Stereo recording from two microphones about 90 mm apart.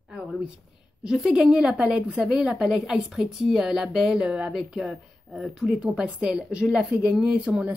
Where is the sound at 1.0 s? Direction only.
5° right (ahead or behind).